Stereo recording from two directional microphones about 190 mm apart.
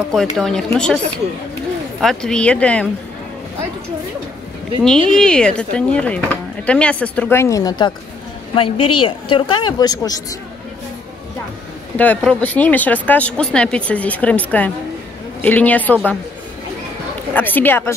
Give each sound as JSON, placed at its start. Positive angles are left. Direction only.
{"t": 0.4, "sound": "speech", "side_deg": 0}
{"t": 2.0, "sound": "speech", "side_deg": 0}
{"t": 4.8, "sound": "a woman's voice", "side_deg": 5}
{"t": 12.0, "sound": "speech", "side_deg": 5}
{"t": 17.3, "sound": "speech", "side_deg": 10}